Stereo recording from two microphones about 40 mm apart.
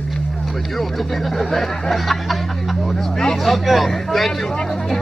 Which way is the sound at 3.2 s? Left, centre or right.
Centre.